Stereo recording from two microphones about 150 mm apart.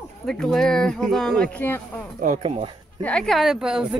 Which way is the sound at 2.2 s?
50° right (ahead or behind).